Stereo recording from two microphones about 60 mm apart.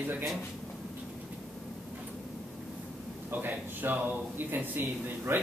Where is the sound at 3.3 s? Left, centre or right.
Right.